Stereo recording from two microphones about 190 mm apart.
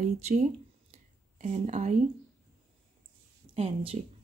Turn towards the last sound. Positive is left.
turn(degrees=-30)  # may be behind; listen again after turning